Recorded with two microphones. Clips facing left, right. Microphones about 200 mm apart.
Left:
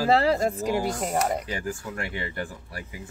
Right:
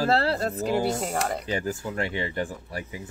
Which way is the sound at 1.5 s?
25° right (ahead or behind).